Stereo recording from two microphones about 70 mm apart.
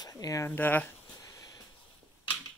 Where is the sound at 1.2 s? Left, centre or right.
Left.